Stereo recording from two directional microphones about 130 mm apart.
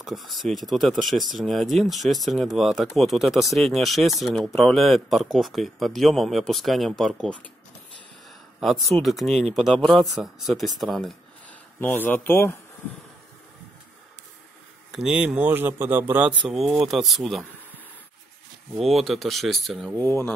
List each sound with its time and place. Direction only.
0.0 s speech: centre (ahead or behind)
8.8 s speech: centre (ahead or behind)
11.8 s speech: 15° left (ahead or behind)
14.9 s speech: 5° right (ahead or behind)
16.5 s speech: 5° right (ahead or behind)
18.8 s speech: centre (ahead or behind)
20.0 s speech: 15° left (ahead or behind)